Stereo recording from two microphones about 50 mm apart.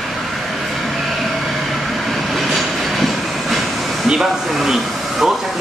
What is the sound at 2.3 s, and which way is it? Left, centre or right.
Train, centre.